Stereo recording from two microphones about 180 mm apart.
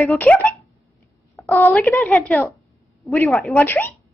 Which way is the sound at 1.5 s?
10° left (ahead or behind).